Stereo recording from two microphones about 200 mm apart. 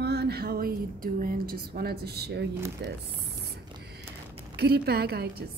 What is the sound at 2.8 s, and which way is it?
Speech, 60° right (ahead or behind).